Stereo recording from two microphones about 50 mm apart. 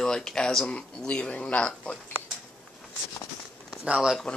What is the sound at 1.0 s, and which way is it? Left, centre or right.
Speech, left.